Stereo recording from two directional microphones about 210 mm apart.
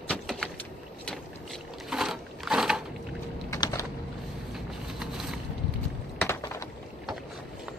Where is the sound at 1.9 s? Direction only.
Centre (ahead or behind).